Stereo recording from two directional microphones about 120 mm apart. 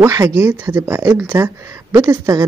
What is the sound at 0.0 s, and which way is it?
Speech, 25° right (ahead or behind).